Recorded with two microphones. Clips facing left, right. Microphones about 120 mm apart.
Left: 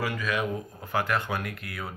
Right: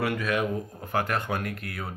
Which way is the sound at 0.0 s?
55° right (ahead or behind).